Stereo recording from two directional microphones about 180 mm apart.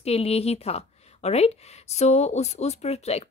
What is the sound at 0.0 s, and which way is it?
A woman's voice, 35° left (ahead or behind).